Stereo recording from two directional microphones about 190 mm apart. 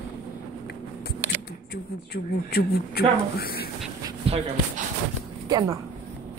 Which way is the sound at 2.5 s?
55° left (ahead or behind).